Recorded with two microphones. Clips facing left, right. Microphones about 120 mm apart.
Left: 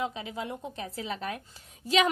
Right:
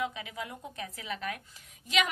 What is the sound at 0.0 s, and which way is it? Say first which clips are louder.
A woman's voice: left 2 dB; 30° left (ahead or behind).